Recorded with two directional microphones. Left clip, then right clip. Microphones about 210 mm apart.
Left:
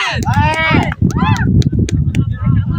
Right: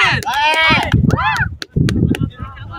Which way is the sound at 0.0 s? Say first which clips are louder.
Right 2 dB; centre (ahead or behind).